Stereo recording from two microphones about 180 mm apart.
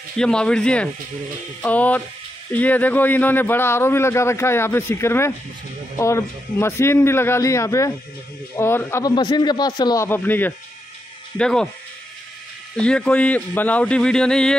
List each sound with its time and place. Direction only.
0.2 s speech: 5° left (ahead or behind)
9.1 s speech: 25° left (ahead or behind)
10.0 s speech: 10° left (ahead or behind)
12.8 s speech: 5° left (ahead or behind)